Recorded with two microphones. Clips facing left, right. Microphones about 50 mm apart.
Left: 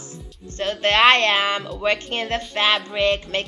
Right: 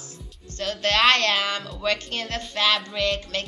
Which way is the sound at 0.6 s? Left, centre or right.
Left.